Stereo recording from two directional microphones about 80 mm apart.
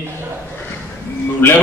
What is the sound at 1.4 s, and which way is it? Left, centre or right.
Speech, left.